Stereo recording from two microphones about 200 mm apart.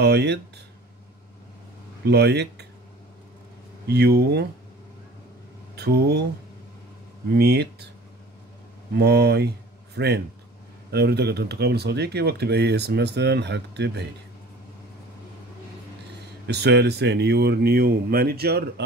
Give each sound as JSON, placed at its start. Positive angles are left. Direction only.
{"t": 0.0, "sound": "speech", "side_deg": -55}
{"t": 2.0, "sound": "speech", "side_deg": -55}
{"t": 3.8, "sound": "speech", "side_deg": -55}
{"t": 5.8, "sound": "speech", "side_deg": -55}
{"t": 7.3, "sound": "speech", "side_deg": -55}
{"t": 8.9, "sound": "speech", "side_deg": -55}
{"t": 16.4, "sound": "speech", "side_deg": -55}